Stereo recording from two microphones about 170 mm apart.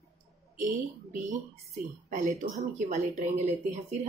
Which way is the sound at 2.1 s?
50° right (ahead or behind).